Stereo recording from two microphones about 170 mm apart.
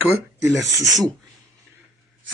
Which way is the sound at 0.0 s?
10° right (ahead or behind).